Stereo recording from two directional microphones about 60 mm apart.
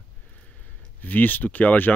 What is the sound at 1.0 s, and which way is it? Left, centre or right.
Speech, left.